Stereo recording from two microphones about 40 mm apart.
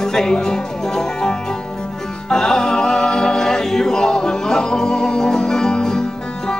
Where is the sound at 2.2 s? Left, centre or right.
Centre.